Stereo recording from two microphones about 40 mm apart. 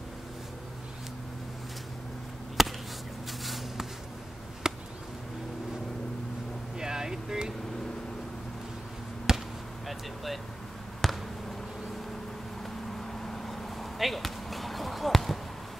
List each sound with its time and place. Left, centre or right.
2.6 s a sound: centre
4.6 s chop: centre
6.8 s a sound: centre
9.3 s basketball bounce: centre
9.8 s vehicle: centre
11.0 s basketball bounce: centre
12.6 s basketball bounce: centre